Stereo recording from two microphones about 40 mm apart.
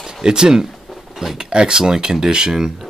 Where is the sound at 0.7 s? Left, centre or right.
Centre.